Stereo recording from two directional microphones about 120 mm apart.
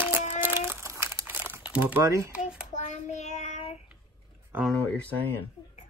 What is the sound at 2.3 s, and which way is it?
Child singing, 10° right (ahead or behind).